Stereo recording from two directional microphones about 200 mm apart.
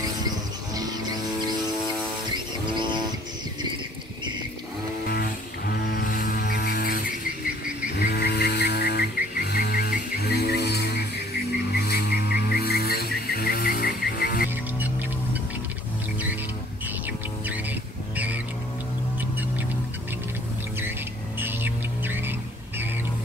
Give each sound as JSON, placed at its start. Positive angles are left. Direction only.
{"t": 2.3, "sound": "music", "side_deg": -25}
{"t": 5.0, "sound": "a sound", "side_deg": 50}
{"t": 5.9, "sound": "music", "side_deg": 45}
{"t": 8.1, "sound": "music", "side_deg": 55}
{"t": 17.5, "sound": "vehicle", "side_deg": -10}
{"t": 21.4, "sound": "music", "side_deg": -10}